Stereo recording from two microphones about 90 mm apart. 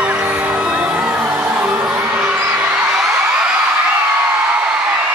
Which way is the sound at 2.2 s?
25° right (ahead or behind).